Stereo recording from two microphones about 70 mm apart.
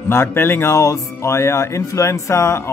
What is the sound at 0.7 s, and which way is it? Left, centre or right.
Speech, left.